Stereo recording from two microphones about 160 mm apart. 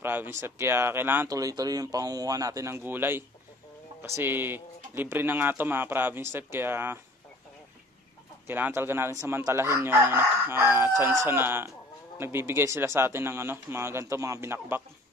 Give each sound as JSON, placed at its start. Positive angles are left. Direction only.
{"t": 0.0, "sound": "speech", "side_deg": -15}
{"t": 8.5, "sound": "speech", "side_deg": -10}